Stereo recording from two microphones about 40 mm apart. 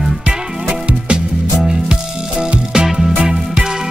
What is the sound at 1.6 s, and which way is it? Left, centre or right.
Music, centre.